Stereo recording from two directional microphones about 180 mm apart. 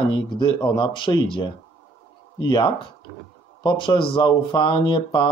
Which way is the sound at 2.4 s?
25° left (ahead or behind).